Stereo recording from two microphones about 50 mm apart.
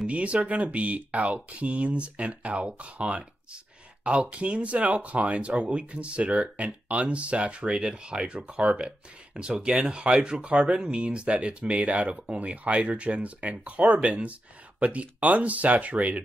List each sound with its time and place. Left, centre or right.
0.0 s speech: right